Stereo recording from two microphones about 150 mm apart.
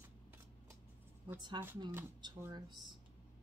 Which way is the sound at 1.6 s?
30° right (ahead or behind).